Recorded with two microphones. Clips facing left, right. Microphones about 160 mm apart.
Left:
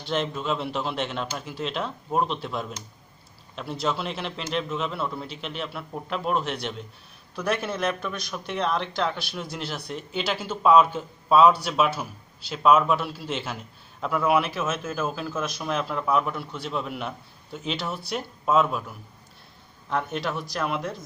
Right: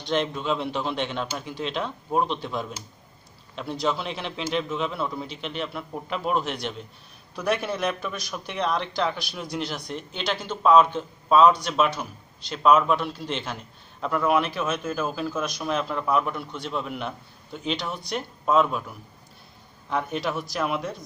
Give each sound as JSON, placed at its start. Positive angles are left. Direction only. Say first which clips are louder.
{"t": 0.0, "sound": "a man's voice", "louder": "right 2 dB", "side_deg": 0}